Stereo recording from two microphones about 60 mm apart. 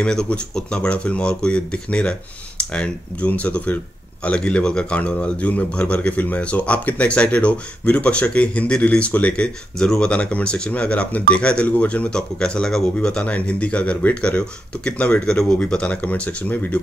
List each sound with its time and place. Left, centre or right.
0.0 s speech: centre
9.8 s speech: centre